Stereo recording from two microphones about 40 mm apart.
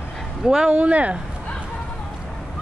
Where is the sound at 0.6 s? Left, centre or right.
Right.